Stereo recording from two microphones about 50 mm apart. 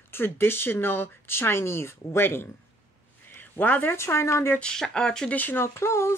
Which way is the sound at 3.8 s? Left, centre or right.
Left.